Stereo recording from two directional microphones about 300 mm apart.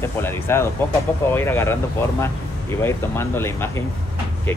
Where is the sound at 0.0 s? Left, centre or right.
Centre.